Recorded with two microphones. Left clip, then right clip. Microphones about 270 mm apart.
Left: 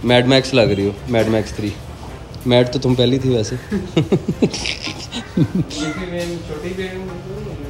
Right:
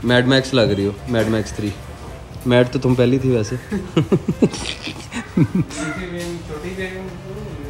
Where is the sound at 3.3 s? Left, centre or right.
Centre.